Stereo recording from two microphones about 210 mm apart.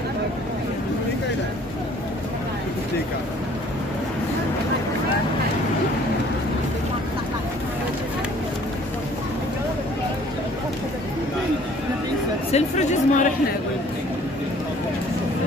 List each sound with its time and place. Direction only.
12.5 s chatter: 35° left (ahead or behind)